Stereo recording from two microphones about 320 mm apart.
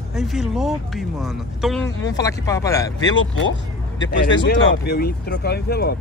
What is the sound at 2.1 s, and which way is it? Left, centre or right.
Speech, centre.